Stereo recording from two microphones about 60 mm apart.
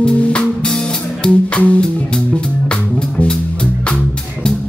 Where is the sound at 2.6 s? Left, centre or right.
Centre.